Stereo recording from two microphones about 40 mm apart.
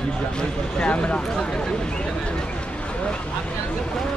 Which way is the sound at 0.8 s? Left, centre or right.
Left.